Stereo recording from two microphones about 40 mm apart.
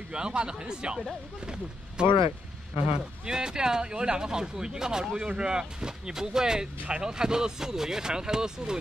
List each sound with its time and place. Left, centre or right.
0.1 s speech: right